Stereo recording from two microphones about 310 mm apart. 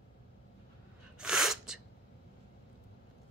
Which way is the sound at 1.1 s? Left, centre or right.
Centre.